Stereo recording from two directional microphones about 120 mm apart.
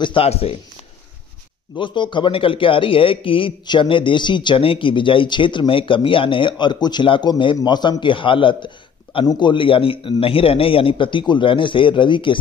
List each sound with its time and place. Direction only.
0.0 s a man's voice: 50° left (ahead or behind)
1.8 s a man's voice: 40° left (ahead or behind)